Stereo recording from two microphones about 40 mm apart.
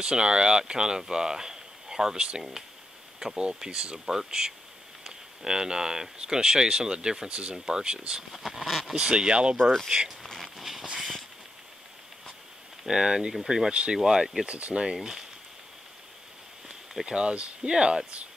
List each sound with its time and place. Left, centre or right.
0.0 s speech: centre
8.3 s speech: centre
8.9 s speech: right
10.4 s a sound: centre
12.8 s speech: centre
14.5 s speech: right
15.0 s speech: centre
17.0 s speech: right